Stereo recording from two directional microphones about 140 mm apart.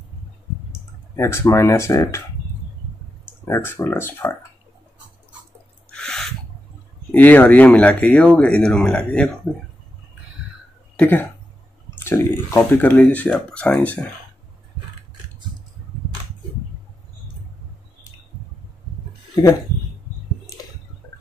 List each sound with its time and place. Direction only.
0.7 s speech: 20° left (ahead or behind)
3.4 s speech: 20° left (ahead or behind)
5.9 s a sound: 5° left (ahead or behind)
7.1 s speech: 10° left (ahead or behind)
11.0 s speech: 15° left (ahead or behind)